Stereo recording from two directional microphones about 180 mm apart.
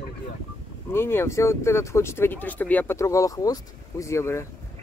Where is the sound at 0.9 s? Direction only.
15° left (ahead or behind).